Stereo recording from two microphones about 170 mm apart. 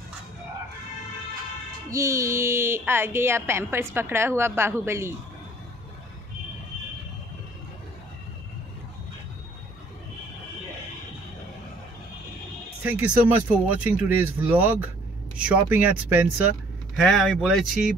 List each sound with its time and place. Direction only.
1.9 s a woman's voice: 15° right (ahead or behind)
12.8 s a woman's voice: 10° right (ahead or behind)
16.9 s speech: centre (ahead or behind)